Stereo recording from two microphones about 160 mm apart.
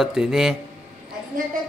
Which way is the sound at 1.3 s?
60° right (ahead or behind).